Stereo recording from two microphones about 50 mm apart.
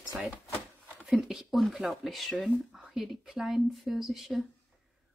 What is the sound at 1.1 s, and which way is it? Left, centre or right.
A woman's voice, centre.